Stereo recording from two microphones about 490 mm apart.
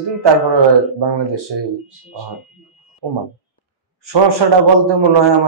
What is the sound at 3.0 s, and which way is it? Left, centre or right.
Speech, right.